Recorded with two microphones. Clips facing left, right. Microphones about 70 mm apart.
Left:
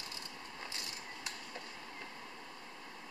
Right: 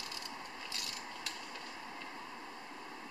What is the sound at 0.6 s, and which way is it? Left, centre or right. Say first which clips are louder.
Mechanisms: right 1 dB; left.